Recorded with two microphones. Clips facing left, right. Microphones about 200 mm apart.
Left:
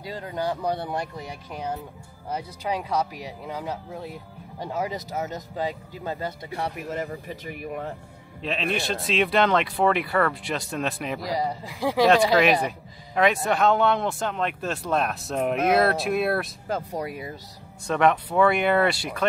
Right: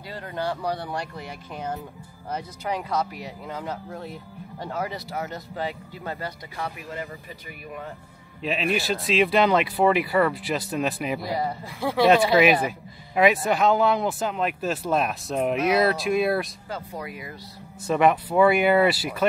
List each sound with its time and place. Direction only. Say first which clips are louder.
0.0 s speech: left 1 dB; 15° left (ahead or behind)
6.9 s speech: left 4 dB; 45° left (ahead or behind)
8.4 s speech: right 2 dB; 5° right (ahead or behind)
11.3 s speech: even; 15° left (ahead or behind)
12.4 s speech: right 2 dB; 5° right (ahead or behind)
16.9 s speech: left 4 dB; 35° left (ahead or behind)
17.8 s speech: right 1 dB; 5° right (ahead or behind)